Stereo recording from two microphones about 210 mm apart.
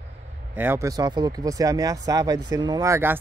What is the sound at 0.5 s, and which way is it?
Speech, 10° right (ahead or behind).